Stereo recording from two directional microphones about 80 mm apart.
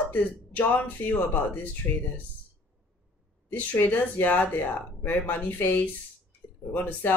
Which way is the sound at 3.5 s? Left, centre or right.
Left.